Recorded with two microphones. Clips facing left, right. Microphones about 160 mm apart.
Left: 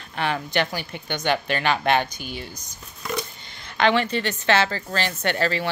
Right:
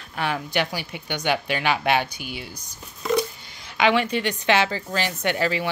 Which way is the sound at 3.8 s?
10° right (ahead or behind).